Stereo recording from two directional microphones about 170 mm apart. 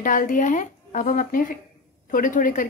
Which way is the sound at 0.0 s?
50° left (ahead or behind).